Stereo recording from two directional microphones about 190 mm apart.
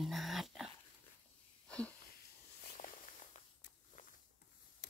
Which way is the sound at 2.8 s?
45° left (ahead or behind).